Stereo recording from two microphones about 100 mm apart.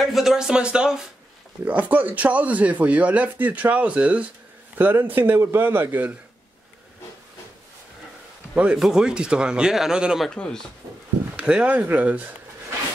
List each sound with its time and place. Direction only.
0.0 s a man's voice: 5° right (ahead or behind); by 6.1 s 20° right (ahead or behind)
8.7 s speech: 5° right (ahead or behind)
10.3 s speech: 10° left (ahead or behind)
11.3 s speech: 10° right (ahead or behind)